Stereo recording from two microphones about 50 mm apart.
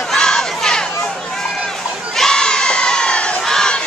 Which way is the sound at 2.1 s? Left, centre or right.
Centre.